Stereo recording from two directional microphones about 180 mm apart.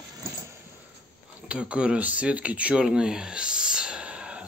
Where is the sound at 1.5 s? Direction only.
5° right (ahead or behind).